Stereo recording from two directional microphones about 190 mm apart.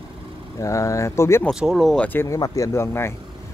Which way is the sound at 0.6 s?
15° left (ahead or behind).